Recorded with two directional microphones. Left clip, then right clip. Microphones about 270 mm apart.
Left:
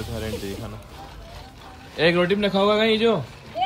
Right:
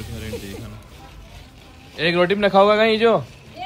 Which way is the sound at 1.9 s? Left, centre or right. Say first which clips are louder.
Right 1 dB; centre.